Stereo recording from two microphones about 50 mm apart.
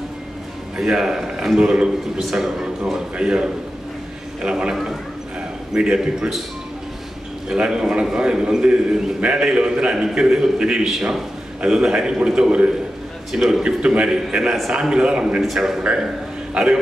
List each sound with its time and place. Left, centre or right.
0.7 s a man's voice: centre
7.4 s a man's voice: centre
13.3 s a man's voice: centre
15.4 s a man's voice: centre